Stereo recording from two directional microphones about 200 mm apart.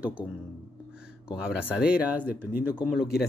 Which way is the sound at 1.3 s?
5° right (ahead or behind).